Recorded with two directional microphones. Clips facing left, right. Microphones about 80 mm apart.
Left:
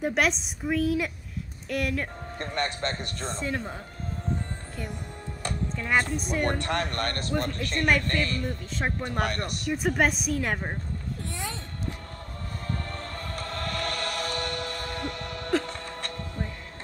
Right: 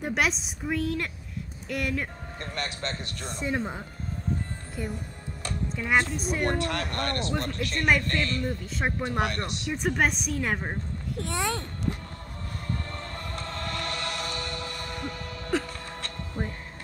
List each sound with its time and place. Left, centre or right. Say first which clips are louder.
0.0 s speech: left 2 dB; centre
2.4 s speech: left 4 dB; centre
3.3 s speech: right 4 dB; centre
5.8 s speech: right 1 dB; centre
9.3 s speech: left 2 dB; centre
11.1 s speech: right 6 dB; right
13.6 s chant: left 2 dB; left
15.0 s music: left 2 dB; left
15.5 s a sound: left 2 dB; centre